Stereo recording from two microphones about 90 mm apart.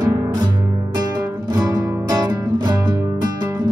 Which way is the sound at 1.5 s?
45° right (ahead or behind).